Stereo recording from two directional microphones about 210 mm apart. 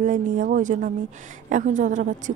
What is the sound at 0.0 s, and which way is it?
A woman's voice, 40° right (ahead or behind).